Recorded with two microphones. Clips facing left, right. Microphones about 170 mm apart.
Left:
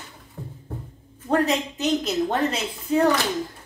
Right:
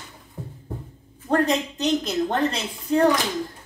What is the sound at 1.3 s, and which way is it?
A woman's voice, 5° left (ahead or behind).